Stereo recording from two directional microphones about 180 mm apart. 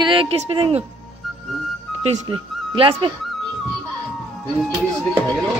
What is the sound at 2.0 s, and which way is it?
Speech, 35° right (ahead or behind).